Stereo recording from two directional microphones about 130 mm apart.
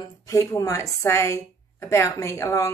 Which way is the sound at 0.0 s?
25° left (ahead or behind).